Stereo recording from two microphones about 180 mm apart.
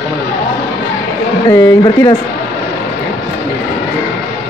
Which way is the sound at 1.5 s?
20° left (ahead or behind).